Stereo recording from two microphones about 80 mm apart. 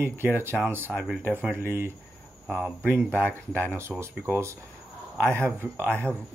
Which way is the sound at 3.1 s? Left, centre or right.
Right.